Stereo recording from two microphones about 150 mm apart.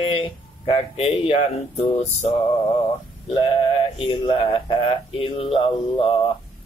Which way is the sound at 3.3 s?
35° left (ahead or behind).